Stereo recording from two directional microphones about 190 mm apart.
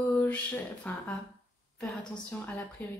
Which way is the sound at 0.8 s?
5° left (ahead or behind).